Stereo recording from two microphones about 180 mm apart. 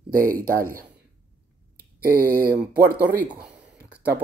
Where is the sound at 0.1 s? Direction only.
50° right (ahead or behind).